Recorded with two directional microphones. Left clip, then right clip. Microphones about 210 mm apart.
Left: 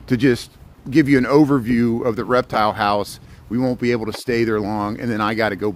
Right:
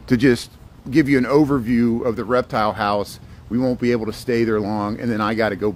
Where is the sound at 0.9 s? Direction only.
30° left (ahead or behind).